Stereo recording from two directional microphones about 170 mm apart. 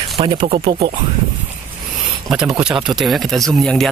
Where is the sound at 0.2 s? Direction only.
30° right (ahead or behind).